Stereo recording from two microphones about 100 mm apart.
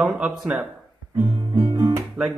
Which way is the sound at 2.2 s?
15° right (ahead or behind).